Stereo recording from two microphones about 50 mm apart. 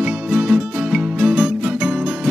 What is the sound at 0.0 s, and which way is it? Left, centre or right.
Music, centre.